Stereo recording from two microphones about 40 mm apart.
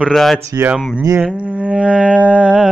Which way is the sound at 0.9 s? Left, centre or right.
Right.